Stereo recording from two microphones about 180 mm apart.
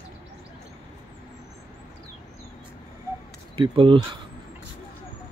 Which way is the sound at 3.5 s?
30° right (ahead or behind).